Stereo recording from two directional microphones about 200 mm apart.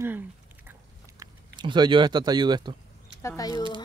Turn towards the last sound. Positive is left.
turn(degrees=20)  # may be behind; listen again after turning